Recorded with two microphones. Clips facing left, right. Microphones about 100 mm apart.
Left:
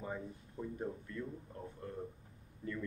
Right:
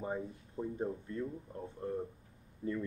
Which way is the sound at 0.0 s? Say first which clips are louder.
Right 4 dB; 25° right (ahead or behind).